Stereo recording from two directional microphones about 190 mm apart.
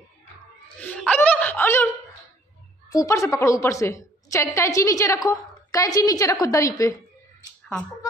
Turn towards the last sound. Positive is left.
turn(degrees=5)  # may be behind; listen again after turning